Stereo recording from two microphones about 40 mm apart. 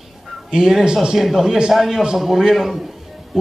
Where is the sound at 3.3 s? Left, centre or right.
Centre.